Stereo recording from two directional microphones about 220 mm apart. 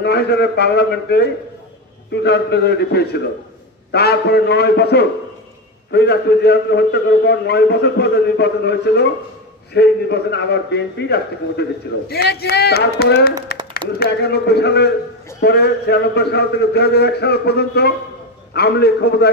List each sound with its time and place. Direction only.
0.0 s a man's voice: 50° left (ahead or behind)